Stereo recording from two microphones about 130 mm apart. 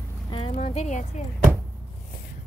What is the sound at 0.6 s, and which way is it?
Speech, 60° left (ahead or behind).